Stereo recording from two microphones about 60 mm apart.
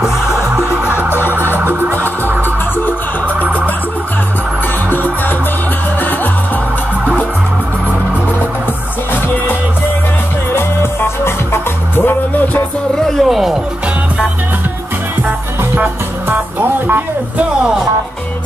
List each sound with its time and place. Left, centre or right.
1.6 s music: right
3.3 s music: right
4.8 s music: left
10.5 s music: left
13.0 s speech: centre
15.7 s music: right
17.4 s music: centre